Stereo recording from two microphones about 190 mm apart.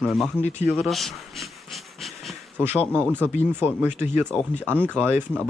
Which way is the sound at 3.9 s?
40° left (ahead or behind).